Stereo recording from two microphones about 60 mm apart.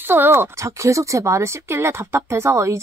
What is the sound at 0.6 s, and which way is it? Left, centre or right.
Speech, right.